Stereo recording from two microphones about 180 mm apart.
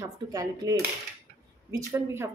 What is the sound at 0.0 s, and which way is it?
A woman's voice, 20° right (ahead or behind).